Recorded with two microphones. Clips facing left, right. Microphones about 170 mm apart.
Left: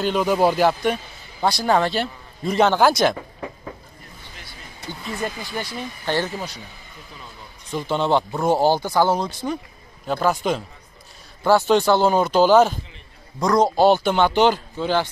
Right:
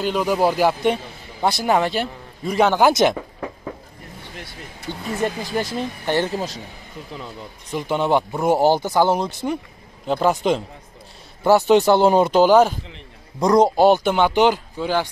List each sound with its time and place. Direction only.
0.0 s speech: 5° right (ahead or behind)
0.8 s a man's voice: 25° right (ahead or behind)
2.9 s a man's voice: 20° right (ahead or behind)
5.4 s speech: 45° right (ahead or behind)
6.0 s speech: 15° right (ahead or behind)
7.7 s a man's voice: 10° right (ahead or behind)